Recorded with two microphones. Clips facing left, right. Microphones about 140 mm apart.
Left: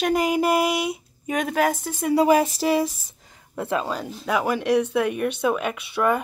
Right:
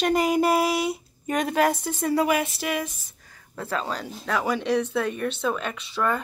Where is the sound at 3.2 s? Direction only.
20° left (ahead or behind).